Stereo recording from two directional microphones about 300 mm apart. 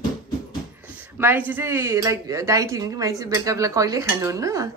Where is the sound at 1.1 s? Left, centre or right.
Centre.